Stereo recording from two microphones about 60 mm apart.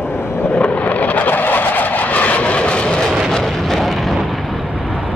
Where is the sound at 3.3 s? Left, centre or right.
Centre.